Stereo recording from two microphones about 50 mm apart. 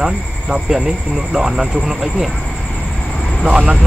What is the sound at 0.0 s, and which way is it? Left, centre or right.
Speech, centre.